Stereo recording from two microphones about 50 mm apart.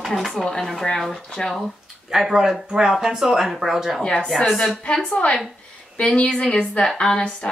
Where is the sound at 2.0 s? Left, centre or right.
Centre.